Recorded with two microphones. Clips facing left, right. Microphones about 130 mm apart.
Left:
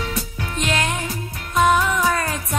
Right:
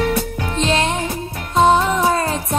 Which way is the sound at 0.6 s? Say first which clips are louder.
Right 4 dB; 30° right (ahead or behind).